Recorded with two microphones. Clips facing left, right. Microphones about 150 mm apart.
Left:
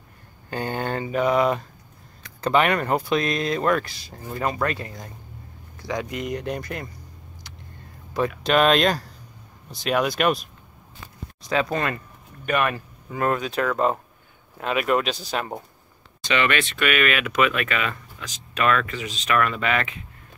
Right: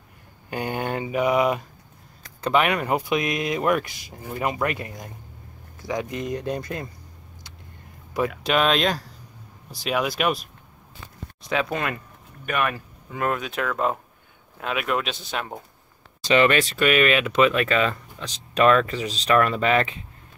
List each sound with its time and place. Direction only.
0.5 s mantra: 15° right (ahead or behind)
2.4 s speech: 5° right (ahead or behind); by 6.9 s 25° right (ahead or behind)
8.5 s speech: centre (ahead or behind)
16.3 s speech: 35° right (ahead or behind)